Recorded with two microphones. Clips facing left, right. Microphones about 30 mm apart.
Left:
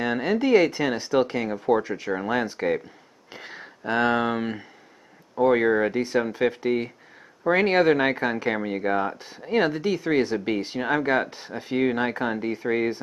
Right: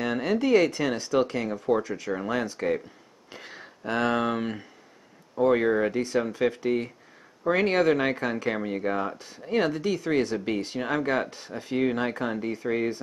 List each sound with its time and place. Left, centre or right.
0.0 s speech: centre